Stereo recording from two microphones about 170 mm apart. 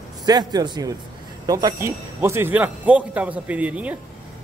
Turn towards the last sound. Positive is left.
turn(degrees=-10)  # may be behind; listen again after turning